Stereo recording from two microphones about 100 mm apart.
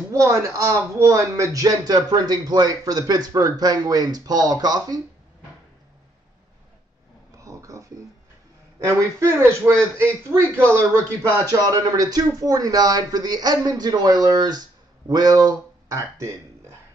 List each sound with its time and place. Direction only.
0.1 s speech: 35° right (ahead or behind)
7.3 s a sound: 35° right (ahead or behind)
8.8 s a man's voice: 30° right (ahead or behind)
11.2 s speech: 20° left (ahead or behind)
11.5 s speech: 35° right (ahead or behind)